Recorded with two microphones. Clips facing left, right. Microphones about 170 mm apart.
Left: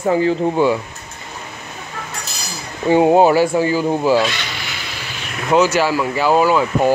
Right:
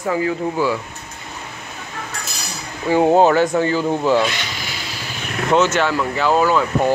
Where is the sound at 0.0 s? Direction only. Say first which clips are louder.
Left 4 dB; 30° left (ahead or behind).